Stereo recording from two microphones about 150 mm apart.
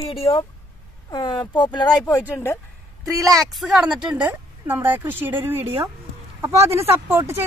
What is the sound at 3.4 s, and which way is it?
Speech, centre (ahead or behind).